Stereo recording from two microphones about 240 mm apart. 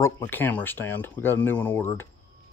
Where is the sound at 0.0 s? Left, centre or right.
Centre.